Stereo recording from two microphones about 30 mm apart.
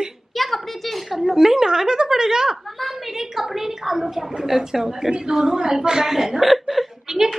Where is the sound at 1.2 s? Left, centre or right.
Centre.